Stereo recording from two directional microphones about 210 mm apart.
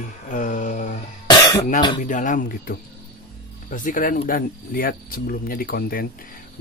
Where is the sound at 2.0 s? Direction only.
40° left (ahead or behind).